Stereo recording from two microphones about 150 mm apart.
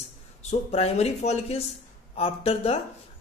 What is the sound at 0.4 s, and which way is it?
Speech, 45° left (ahead or behind).